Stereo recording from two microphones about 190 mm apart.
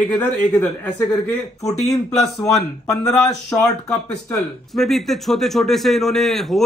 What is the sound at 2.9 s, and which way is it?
Speech, 15° left (ahead or behind).